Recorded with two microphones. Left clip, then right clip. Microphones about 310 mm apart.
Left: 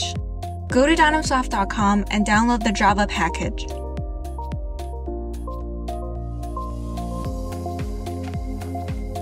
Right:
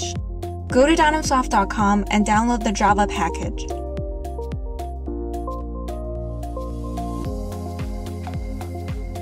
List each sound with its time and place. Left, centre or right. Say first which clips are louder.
0.7 s speech: right 1 dB; left